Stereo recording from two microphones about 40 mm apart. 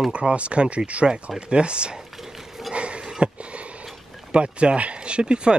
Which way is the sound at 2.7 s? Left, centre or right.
Right.